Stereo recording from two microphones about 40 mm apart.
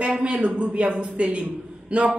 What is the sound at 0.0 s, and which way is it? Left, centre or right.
A woman's voice, right.